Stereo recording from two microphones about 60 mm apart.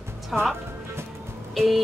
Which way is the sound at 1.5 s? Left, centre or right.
Centre.